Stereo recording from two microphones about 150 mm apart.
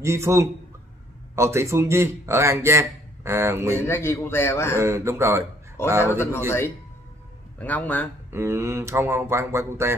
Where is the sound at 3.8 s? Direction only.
15° left (ahead or behind).